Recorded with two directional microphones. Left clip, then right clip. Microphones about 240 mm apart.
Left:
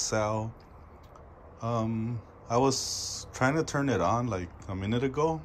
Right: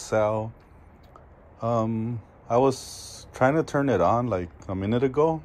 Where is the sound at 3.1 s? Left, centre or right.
Left.